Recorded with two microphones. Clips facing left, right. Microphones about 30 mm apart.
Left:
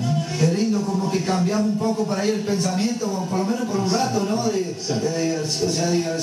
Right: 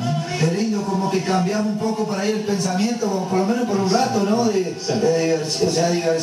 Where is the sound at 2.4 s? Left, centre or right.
Centre.